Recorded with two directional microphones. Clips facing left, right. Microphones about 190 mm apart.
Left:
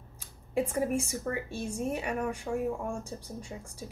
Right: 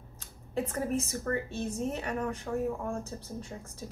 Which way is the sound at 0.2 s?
10° left (ahead or behind).